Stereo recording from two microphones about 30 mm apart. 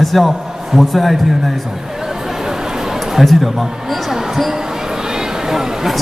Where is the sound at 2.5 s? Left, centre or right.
Centre.